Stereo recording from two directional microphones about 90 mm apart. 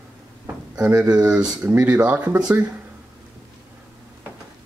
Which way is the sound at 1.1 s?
10° right (ahead or behind).